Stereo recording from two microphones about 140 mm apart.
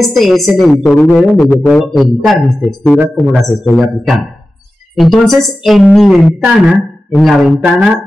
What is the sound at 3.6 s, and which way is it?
A woman's voice, 5° right (ahead or behind).